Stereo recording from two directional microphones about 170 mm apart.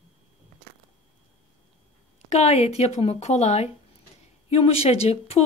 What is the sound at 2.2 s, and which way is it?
Speech, 40° left (ahead or behind).